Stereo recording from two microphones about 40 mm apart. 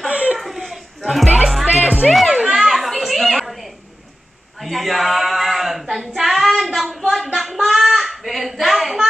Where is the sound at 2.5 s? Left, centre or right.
Centre.